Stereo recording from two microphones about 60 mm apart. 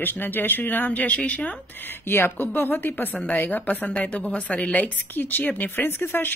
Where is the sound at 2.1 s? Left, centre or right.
Left.